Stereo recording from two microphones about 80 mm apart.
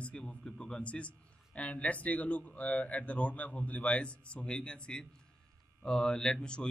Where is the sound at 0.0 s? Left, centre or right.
Centre.